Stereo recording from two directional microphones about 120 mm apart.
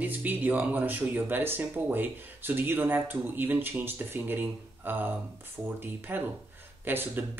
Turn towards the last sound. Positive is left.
turn(degrees=-15)  # may be behind; listen again after turning